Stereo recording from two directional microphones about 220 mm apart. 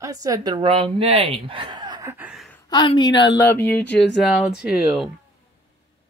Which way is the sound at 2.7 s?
20° left (ahead or behind).